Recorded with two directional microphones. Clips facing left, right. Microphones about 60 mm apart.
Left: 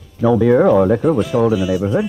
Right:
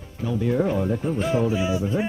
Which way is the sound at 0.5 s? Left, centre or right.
Left.